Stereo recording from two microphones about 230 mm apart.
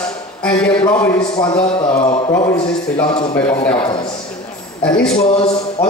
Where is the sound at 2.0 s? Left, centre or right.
Left.